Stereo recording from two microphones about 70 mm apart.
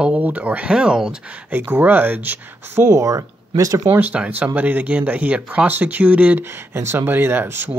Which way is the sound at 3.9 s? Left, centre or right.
Right.